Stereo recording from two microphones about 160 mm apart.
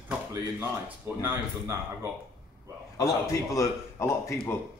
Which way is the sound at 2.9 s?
20° left (ahead or behind).